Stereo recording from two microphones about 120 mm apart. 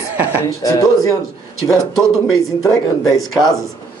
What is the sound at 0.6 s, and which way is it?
Speech, 30° left (ahead or behind).